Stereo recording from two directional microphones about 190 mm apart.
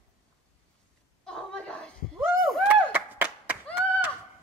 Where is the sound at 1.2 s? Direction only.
5° left (ahead or behind).